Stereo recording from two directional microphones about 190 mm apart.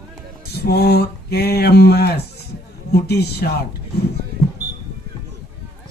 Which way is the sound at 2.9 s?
60° left (ahead or behind).